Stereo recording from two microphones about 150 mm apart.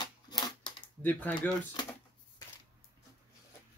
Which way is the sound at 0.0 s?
30° left (ahead or behind).